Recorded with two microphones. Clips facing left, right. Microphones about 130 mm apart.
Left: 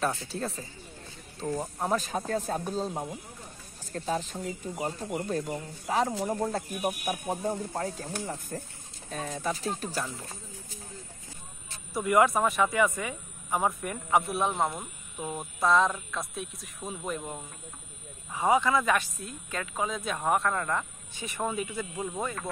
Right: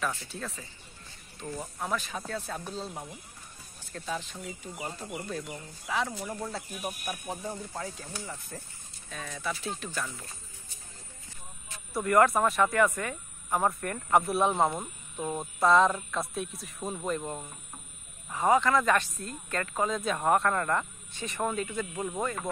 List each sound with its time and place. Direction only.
0.0 s speech: 35° left (ahead or behind)
6.2 s a sound: 45° left (ahead or behind)
6.7 s speech: 55° left (ahead or behind)
7.1 s speech: 30° left (ahead or behind)
7.5 s a sound: 40° left (ahead or behind)
9.1 s speech: 40° left (ahead or behind)
11.9 s speech: 5° left (ahead or behind)
15.6 s speech: centre (ahead or behind)
18.3 s speech: 10° left (ahead or behind)